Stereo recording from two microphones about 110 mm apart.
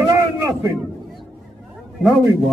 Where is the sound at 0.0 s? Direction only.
30° right (ahead or behind).